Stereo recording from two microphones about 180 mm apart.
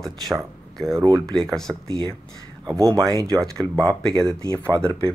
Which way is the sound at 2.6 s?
20° right (ahead or behind).